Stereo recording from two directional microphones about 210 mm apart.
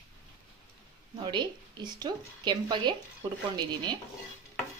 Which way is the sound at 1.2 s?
20° right (ahead or behind).